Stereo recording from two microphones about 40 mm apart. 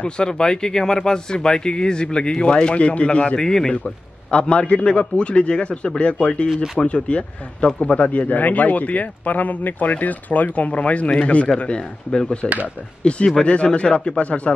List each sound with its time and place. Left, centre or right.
0.0 s speech: left
3.3 s a man's voice: centre
3.7 s speech: left
6.5 s speech: centre
6.8 s speech: left
8.0 s speech: left
12.1 s speech: centre; by 14.5 s left